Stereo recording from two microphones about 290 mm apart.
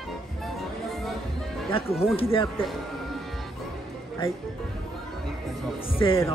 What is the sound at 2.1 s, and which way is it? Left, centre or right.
Speech, centre.